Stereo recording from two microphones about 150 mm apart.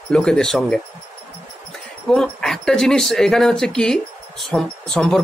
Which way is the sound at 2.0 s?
5° left (ahead or behind).